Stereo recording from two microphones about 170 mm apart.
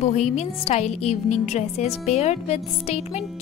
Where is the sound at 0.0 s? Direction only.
40° left (ahead or behind).